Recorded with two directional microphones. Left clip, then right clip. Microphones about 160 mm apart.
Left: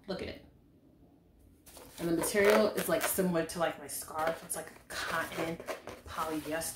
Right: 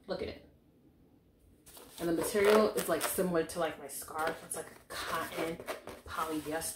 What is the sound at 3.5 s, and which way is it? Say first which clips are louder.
Speech: left 2 dB; 5° left (ahead or behind).